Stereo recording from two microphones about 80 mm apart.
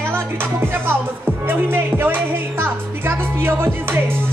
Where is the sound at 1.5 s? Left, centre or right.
Right.